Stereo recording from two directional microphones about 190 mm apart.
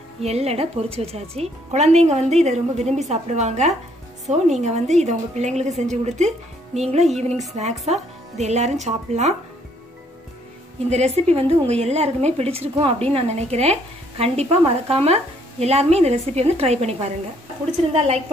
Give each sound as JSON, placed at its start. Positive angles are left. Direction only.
{"t": 0.2, "sound": "a woman's voice", "side_deg": -35}
{"t": 10.9, "sound": "a woman's voice", "side_deg": -35}